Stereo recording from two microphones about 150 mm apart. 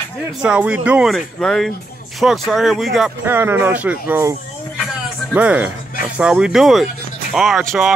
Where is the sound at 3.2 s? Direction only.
15° right (ahead or behind).